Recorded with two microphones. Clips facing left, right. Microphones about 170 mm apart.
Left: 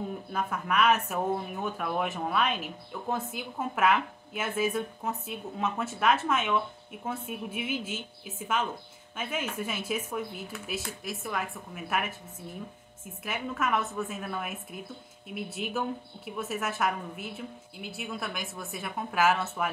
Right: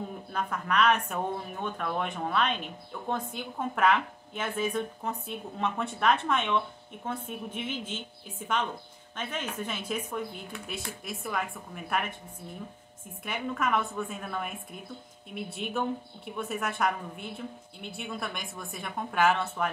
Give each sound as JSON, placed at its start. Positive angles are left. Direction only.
{"t": 0.3, "sound": "a woman's voice", "side_deg": 5}
{"t": 13.2, "sound": "speech", "side_deg": 0}